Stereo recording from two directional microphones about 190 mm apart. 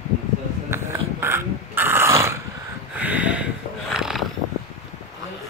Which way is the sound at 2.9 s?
10° right (ahead or behind).